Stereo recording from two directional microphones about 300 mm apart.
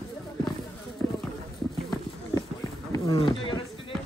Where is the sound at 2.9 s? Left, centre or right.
Centre.